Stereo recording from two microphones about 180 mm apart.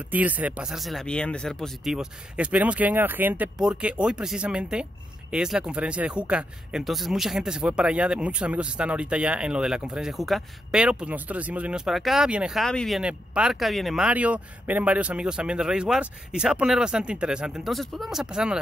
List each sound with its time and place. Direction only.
0.1 s speech: 10° right (ahead or behind)